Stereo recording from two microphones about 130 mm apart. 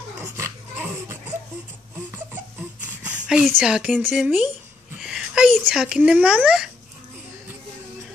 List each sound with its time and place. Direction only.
0.4 s dog: 20° right (ahead or behind)
1.3 s crying: 20° right (ahead or behind)
3.3 s speech: 5° right (ahead or behind)
5.0 s a sound: 5° right (ahead or behind)
5.7 s speech: 5° right (ahead or behind)